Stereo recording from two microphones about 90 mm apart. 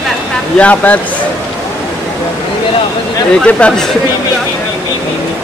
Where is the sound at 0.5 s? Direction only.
15° left (ahead or behind).